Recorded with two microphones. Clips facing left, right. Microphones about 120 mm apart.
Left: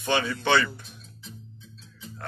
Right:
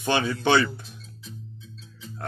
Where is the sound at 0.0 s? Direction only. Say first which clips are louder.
Right 2 dB; 20° right (ahead or behind).